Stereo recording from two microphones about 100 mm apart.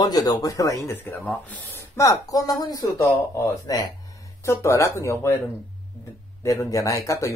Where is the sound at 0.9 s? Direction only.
20° left (ahead or behind).